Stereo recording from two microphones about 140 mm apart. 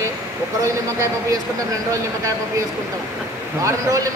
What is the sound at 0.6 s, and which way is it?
Speech, 20° right (ahead or behind).